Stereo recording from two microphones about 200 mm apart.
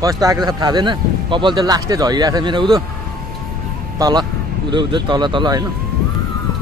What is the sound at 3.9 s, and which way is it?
Speech, 20° right (ahead or behind).